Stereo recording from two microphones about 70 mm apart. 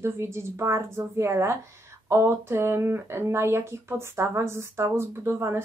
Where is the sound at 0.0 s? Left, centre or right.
Right.